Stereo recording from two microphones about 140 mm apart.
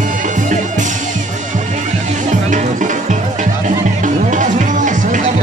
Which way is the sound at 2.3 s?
65° right (ahead or behind).